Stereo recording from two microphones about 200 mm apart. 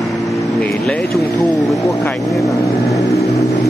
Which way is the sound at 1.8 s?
15° left (ahead or behind).